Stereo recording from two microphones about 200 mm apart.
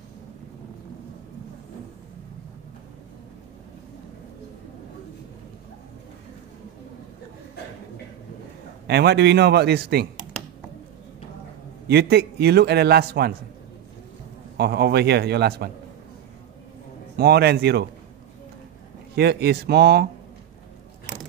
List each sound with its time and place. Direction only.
8.8 s a man's voice: 55° right (ahead or behind)
11.9 s a man's voice: 55° right (ahead or behind)
14.6 s a man's voice: 55° right (ahead or behind)
17.2 s a man's voice: 55° right (ahead or behind)
19.1 s a man's voice: 55° right (ahead or behind)